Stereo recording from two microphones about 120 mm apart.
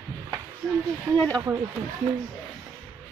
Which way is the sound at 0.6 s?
5° left (ahead or behind).